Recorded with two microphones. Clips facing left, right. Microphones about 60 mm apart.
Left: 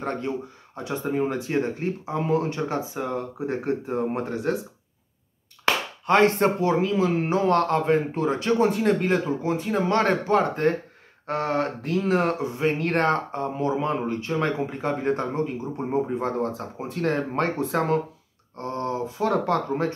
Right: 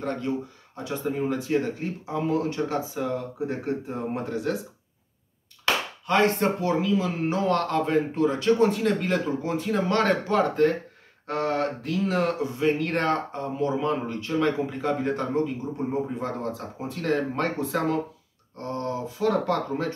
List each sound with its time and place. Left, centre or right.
0.0 s speech: left
6.0 s speech: left